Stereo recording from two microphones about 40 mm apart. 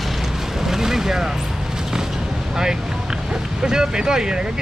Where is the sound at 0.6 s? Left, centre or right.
Centre.